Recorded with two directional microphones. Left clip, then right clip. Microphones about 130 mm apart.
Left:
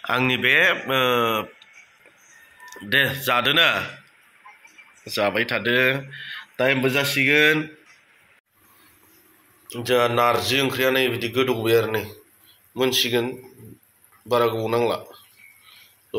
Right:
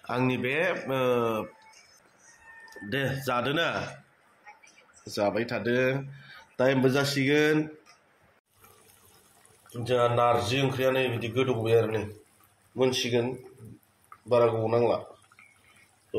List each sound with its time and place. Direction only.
0.0 s speech: 5° left (ahead or behind)
2.6 s chicken: centre (ahead or behind)
3.3 s speech: 5° left (ahead or behind)
5.0 s speech: centre (ahead or behind)
6.5 s speech: 15° right (ahead or behind)
9.8 s speech: 5° left (ahead or behind)
14.3 s speech: 5° left (ahead or behind)